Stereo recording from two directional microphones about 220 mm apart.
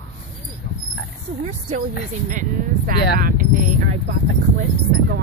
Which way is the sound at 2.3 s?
40° right (ahead or behind).